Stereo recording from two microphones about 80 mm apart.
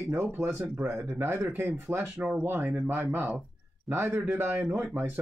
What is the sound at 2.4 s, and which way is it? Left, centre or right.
Speech, right.